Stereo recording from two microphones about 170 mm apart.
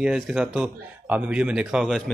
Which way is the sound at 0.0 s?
5° right (ahead or behind).